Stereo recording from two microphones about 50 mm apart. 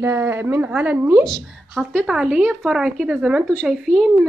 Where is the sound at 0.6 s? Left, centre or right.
Right.